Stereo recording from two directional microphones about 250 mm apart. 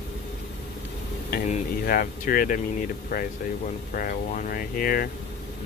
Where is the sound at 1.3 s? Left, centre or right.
Left.